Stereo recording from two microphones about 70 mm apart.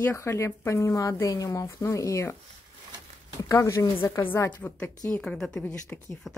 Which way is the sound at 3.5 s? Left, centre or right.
Left.